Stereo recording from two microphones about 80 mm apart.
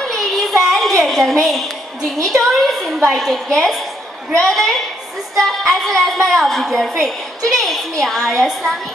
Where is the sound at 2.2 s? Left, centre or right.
Centre.